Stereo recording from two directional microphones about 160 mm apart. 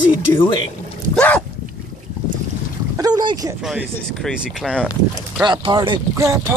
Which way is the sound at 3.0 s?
25° right (ahead or behind).